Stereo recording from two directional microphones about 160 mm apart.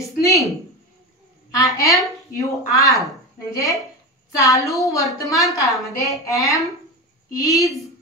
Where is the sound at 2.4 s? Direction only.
20° left (ahead or behind).